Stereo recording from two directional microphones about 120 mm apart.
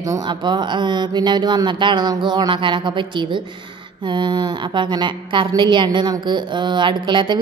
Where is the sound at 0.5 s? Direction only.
40° right (ahead or behind).